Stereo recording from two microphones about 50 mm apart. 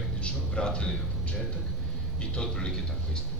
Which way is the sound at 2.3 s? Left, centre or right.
Centre.